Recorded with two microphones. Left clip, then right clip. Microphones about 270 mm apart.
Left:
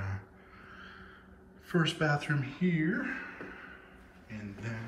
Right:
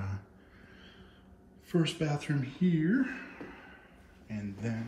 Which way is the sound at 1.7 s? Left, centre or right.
Left.